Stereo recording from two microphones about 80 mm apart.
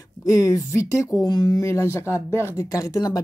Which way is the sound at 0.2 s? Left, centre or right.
Left.